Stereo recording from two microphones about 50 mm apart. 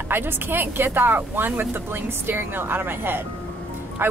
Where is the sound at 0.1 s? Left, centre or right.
Right.